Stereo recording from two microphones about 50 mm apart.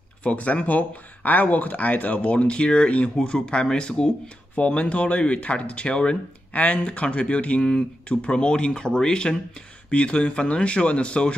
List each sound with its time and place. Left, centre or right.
0.2 s speech: left